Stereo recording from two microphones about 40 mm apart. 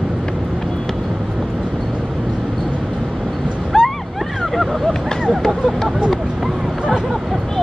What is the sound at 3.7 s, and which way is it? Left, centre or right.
Vehicle, centre.